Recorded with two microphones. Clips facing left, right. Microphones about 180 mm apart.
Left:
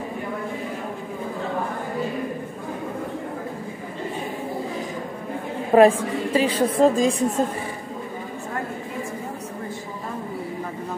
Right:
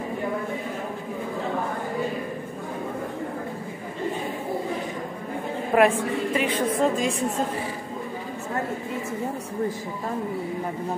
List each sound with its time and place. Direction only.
5.7 s a woman's voice: 35° left (ahead or behind)